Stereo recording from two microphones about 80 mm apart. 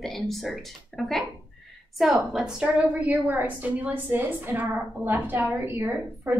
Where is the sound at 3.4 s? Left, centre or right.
Right.